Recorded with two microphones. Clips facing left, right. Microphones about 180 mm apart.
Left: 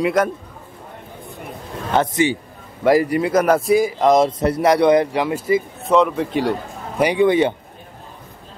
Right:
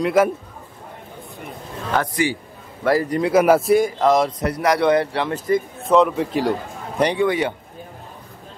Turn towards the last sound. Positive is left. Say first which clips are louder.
# left 5 dB
turn(degrees=25)  # may be behind; listen again after turning